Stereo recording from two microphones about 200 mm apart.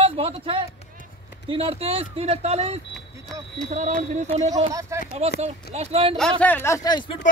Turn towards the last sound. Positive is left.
turn(degrees=25)  # may be behind; listen again after turning